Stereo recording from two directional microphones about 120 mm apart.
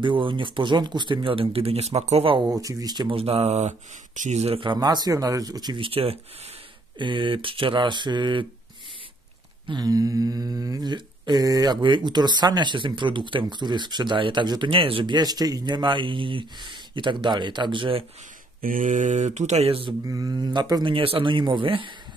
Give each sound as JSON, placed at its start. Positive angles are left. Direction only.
{"t": 0.0, "sound": "speech", "side_deg": -45}
{"t": 2.2, "sound": "speech", "side_deg": -45}
{"t": 2.5, "sound": "speech", "side_deg": -30}
{"t": 3.2, "sound": "speech", "side_deg": -60}
{"t": 4.6, "sound": "speech", "side_deg": -40}
{"t": 9.7, "sound": "speech", "side_deg": -35}
{"t": 18.8, "sound": "speech", "side_deg": -90}
{"t": 20.1, "sound": "speech", "side_deg": -30}
{"t": 20.9, "sound": "speech", "side_deg": -50}